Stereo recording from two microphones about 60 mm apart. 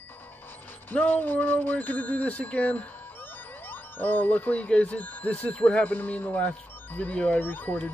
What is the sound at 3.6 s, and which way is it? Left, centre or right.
Speech, left.